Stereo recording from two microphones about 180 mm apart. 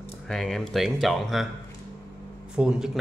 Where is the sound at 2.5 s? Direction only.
5° right (ahead or behind).